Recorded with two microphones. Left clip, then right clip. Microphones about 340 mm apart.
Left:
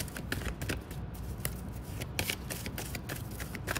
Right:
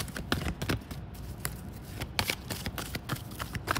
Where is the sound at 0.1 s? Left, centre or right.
Right.